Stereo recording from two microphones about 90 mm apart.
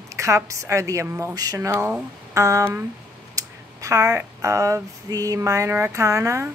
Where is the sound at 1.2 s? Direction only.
45° right (ahead or behind).